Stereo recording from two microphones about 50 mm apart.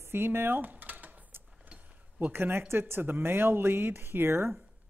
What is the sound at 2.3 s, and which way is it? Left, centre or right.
Speech, right.